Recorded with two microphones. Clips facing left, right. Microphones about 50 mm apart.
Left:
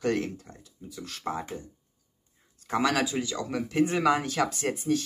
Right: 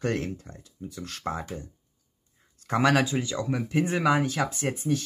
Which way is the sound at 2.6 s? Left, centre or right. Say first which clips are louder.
Right 3 dB; right.